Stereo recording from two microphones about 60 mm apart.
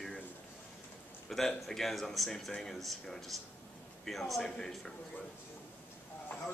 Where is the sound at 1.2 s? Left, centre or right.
Centre.